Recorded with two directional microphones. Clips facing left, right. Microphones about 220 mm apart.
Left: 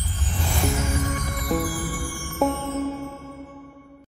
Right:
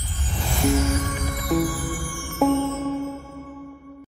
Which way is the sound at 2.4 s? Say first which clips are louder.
Right 4 dB; centre (ahead or behind).